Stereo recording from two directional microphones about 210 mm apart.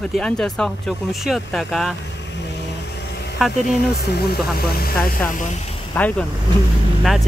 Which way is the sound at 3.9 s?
50° left (ahead or behind).